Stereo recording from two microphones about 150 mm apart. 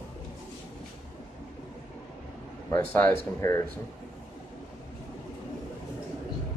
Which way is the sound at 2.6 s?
15° left (ahead or behind).